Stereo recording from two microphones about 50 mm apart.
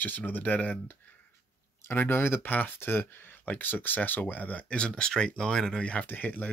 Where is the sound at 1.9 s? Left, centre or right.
Left.